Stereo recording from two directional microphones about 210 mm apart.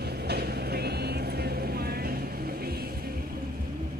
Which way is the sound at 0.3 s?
50° right (ahead or behind).